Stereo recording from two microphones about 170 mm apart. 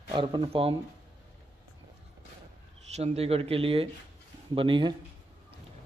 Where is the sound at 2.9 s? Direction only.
40° right (ahead or behind).